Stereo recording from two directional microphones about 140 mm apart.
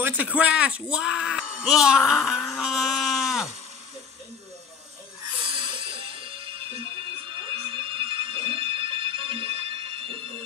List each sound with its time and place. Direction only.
0.0 s speech: 10° right (ahead or behind)
5.4 s music: 35° right (ahead or behind)
7.3 s alarm: 35° right (ahead or behind)